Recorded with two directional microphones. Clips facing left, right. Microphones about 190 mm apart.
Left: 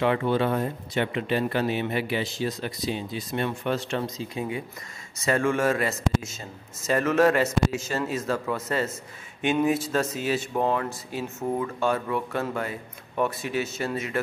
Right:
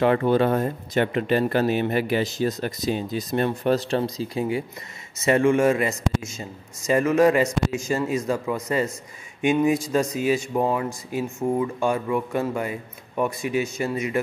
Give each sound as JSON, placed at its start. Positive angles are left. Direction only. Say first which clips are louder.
{"t": 0.0, "sound": "speech", "louder": "right 4 dB", "side_deg": -45}
{"t": 5.2, "sound": "speech", "louder": "right 5 dB", "side_deg": -20}